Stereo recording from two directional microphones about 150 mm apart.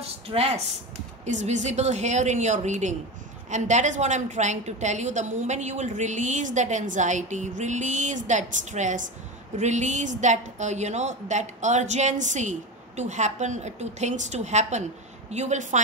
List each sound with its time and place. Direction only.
0.3 s speech: 40° right (ahead or behind)
1.2 s a woman's voice: 55° right (ahead or behind)